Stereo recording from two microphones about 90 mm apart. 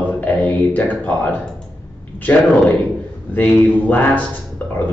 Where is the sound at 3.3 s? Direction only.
20° left (ahead or behind).